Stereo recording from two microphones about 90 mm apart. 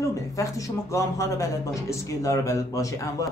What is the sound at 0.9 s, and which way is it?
A man's voice, 35° left (ahead or behind).